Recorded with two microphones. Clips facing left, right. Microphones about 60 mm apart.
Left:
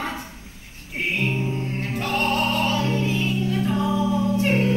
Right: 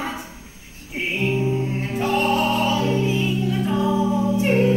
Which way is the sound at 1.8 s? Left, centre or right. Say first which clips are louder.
Right 1 dB; right.